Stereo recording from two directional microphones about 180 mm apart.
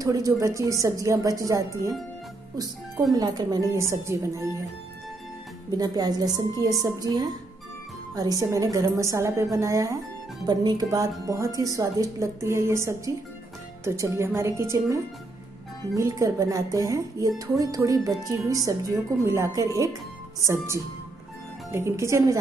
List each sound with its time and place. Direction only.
0.0 s a woman's voice: 20° right (ahead or behind)
3.1 s a woman's voice: 20° right (ahead or behind)
5.7 s a woman's voice: 20° right (ahead or behind)